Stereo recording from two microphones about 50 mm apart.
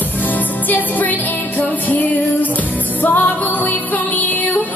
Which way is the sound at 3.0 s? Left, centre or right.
Left.